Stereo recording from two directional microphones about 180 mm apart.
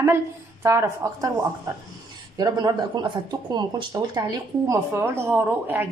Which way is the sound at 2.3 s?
20° right (ahead or behind).